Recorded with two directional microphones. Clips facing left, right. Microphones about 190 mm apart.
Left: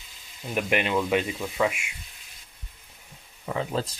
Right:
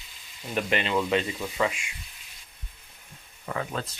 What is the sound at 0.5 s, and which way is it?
Speech, 10° left (ahead or behind).